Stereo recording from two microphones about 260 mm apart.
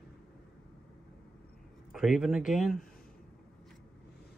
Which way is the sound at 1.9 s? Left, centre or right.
Centre.